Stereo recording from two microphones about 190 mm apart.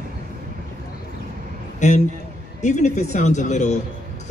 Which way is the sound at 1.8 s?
40° left (ahead or behind).